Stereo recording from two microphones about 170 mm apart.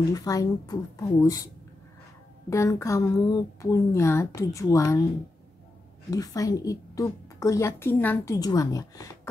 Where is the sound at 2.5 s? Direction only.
15° left (ahead or behind).